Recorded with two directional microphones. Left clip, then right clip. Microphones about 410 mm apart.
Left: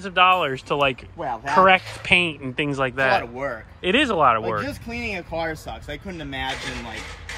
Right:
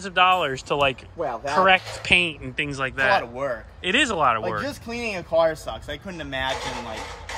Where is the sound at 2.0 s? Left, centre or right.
Centre.